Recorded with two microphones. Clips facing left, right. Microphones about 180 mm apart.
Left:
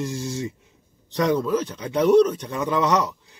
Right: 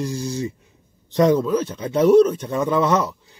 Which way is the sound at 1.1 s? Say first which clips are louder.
Right 5 dB; 25° right (ahead or behind).